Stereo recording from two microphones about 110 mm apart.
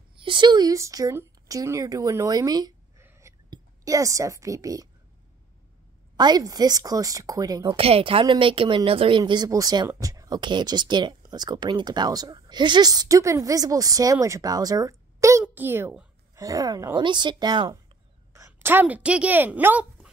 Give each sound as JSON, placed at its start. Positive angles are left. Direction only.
{"t": 0.1, "sound": "speech", "side_deg": -50}
{"t": 3.0, "sound": "a sound", "side_deg": -25}
{"t": 3.4, "sound": "speech", "side_deg": -35}
{"t": 6.1, "sound": "speech", "side_deg": -40}
{"t": 7.6, "sound": "a woman's voice", "side_deg": -60}
{"t": 9.2, "sound": "speech", "side_deg": -40}
{"t": 15.4, "sound": "a child's voice", "side_deg": -20}
{"t": 16.3, "sound": "speech", "side_deg": -30}
{"t": 17.0, "sound": "a woman's voice", "side_deg": -45}
{"t": 18.3, "sound": "a woman's voice", "side_deg": -25}